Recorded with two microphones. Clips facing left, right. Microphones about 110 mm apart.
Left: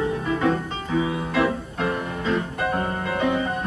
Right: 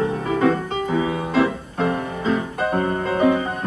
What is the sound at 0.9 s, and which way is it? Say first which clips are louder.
Music: right 2 dB; 25° right (ahead or behind).